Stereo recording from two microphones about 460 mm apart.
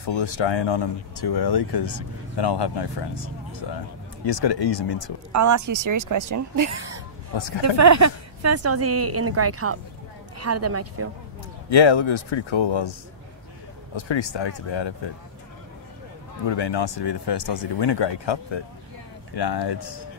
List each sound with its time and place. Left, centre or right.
0.0 s speech: left
4.3 s speech: left
5.3 s a woman's voice: right
7.3 s speech: left
7.6 s a woman's voice: right
11.7 s speech: left
13.9 s speech: left
16.4 s speech: left
19.3 s speech: left